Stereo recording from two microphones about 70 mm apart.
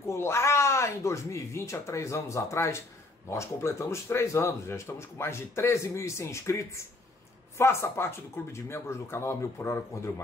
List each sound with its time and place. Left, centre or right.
0.0 s speech: left